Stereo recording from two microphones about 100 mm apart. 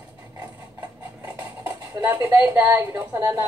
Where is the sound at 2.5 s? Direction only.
30° right (ahead or behind).